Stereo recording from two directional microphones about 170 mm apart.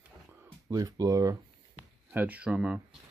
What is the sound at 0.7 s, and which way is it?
Speech, 20° right (ahead or behind).